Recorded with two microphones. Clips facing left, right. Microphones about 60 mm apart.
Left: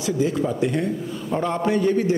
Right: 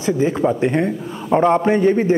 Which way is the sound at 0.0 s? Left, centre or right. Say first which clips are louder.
Right 5 dB; right.